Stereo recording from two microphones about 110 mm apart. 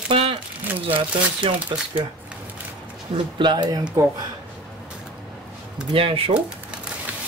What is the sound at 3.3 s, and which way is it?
Speech, 45° right (ahead or behind).